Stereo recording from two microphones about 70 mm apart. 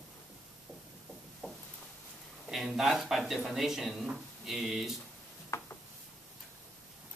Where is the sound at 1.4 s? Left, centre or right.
Left.